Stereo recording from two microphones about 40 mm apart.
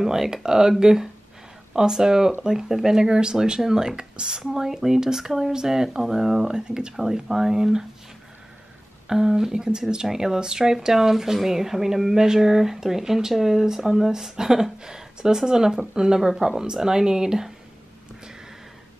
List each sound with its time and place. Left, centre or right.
0.0 s speech: centre
4.5 s speech: centre
6.5 s speech: centre
9.1 s speech: centre